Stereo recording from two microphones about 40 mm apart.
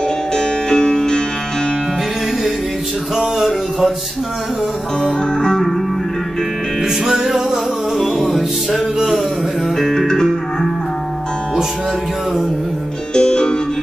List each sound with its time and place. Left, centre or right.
0.3 s music: centre
3.3 s a sound: centre
7.1 s music: centre
13.1 s music: centre